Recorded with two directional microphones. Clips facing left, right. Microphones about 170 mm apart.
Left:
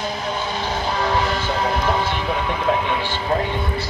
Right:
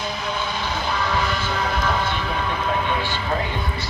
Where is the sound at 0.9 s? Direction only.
35° left (ahead or behind).